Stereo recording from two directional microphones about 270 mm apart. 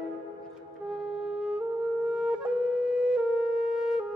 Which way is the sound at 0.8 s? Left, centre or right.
Centre.